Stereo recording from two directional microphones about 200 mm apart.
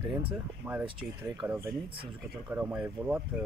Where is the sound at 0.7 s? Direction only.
10° right (ahead or behind).